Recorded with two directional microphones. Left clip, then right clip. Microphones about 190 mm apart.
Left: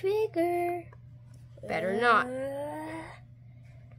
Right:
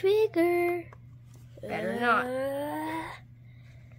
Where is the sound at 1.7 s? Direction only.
50° left (ahead or behind).